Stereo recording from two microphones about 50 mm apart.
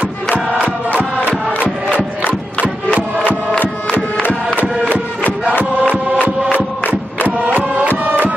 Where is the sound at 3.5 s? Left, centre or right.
Left.